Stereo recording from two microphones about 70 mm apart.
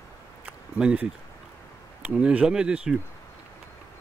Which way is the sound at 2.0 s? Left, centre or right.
Centre.